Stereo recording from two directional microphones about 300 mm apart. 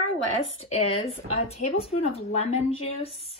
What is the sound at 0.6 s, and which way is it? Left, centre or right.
Speech, left.